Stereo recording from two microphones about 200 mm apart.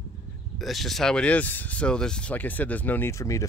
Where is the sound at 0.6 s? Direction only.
Centre (ahead or behind).